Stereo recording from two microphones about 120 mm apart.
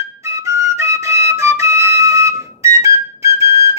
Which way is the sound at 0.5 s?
25° right (ahead or behind).